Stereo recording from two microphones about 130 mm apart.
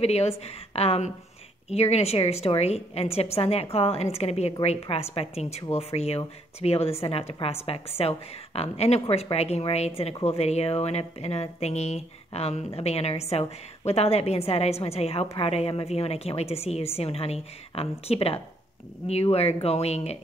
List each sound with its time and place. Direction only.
0.0 s a woman's voice: 55° left (ahead or behind)